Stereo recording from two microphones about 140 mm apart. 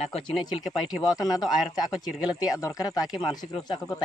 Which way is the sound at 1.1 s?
25° left (ahead or behind).